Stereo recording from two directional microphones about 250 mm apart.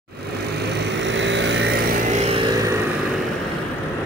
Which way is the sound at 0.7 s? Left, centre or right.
Right.